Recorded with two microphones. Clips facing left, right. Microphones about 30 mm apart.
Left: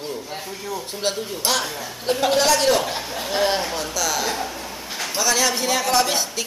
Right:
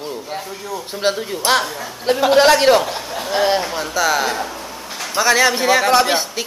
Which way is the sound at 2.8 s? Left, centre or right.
Centre.